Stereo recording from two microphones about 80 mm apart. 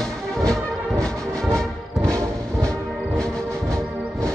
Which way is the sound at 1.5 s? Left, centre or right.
Centre.